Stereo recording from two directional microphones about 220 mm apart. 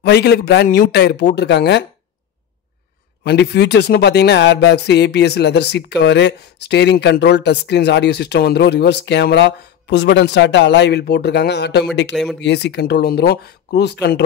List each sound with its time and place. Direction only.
0.0 s speech: 50° left (ahead or behind)
3.3 s speech: 50° left (ahead or behind)